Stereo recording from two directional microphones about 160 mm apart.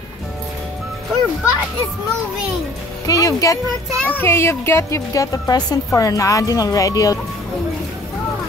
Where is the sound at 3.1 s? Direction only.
20° left (ahead or behind).